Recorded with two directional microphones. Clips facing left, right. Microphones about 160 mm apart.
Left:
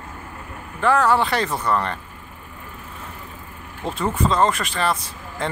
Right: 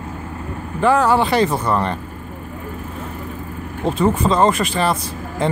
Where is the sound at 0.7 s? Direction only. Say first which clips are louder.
Right 3 dB; 5° right (ahead or behind).